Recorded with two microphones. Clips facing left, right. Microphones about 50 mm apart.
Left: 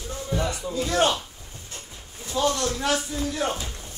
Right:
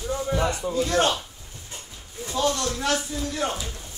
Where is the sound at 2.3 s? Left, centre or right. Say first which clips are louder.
Left 1 dB; centre.